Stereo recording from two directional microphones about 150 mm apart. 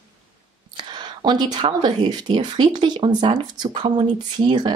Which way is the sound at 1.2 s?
30° right (ahead or behind).